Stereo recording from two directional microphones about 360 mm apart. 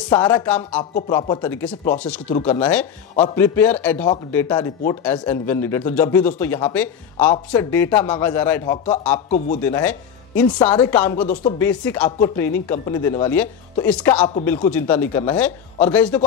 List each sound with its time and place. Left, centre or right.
0.1 s speech: centre